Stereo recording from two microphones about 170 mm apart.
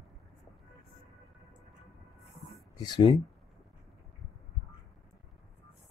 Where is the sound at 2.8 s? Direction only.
25° left (ahead or behind).